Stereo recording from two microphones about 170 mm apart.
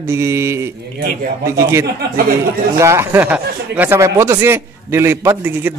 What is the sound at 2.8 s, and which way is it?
Speech, 15° right (ahead or behind).